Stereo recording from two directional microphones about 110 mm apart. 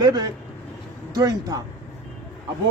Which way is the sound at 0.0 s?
40° right (ahead or behind).